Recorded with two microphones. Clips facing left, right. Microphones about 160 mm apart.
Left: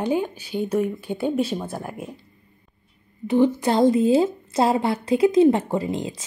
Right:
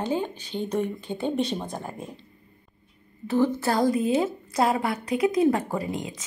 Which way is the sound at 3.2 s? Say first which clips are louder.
Left 4 dB; 15° left (ahead or behind).